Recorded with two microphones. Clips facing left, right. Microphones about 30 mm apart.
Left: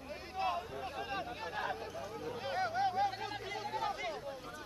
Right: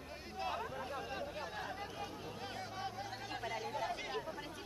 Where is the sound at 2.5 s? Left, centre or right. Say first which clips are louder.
Left 13 dB; left.